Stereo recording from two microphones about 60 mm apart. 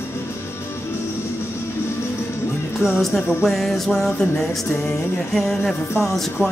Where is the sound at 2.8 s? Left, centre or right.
Centre.